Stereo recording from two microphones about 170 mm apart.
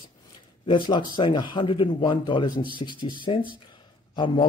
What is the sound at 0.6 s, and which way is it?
A man's voice, 30° left (ahead or behind).